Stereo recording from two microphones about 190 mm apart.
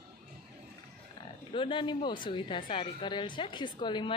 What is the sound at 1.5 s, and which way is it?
Speech, 25° left (ahead or behind).